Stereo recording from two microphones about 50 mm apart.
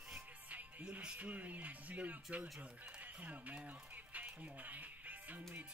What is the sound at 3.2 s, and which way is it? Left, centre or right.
Music, right.